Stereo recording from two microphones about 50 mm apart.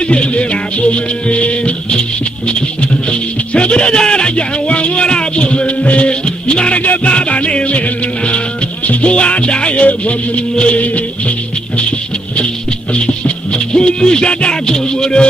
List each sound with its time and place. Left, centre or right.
0.1 s music: left
8.8 s music: left
12.9 s music: left